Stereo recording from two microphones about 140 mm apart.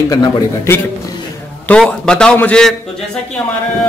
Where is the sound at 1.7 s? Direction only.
5° left (ahead or behind).